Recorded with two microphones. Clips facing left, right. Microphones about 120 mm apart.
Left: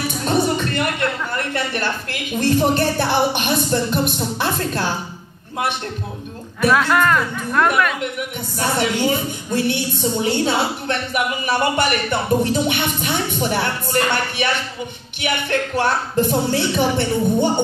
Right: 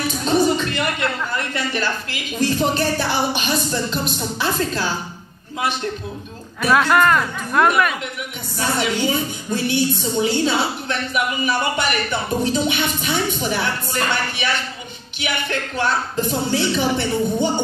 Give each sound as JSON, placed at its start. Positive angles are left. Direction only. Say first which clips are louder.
{"t": 0.3, "sound": "music", "louder": "right 1 dB", "side_deg": 60}
{"t": 1.3, "sound": "a woman's voice", "louder": "left 1 dB", "side_deg": 60}
{"t": 6.6, "sound": "speech", "louder": "even", "side_deg": 0}
{"t": 8.5, "sound": "a woman's voice", "louder": "left 1 dB", "side_deg": 55}